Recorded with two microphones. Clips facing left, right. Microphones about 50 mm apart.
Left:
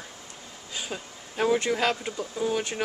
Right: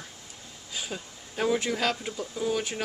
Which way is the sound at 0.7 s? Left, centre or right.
Centre.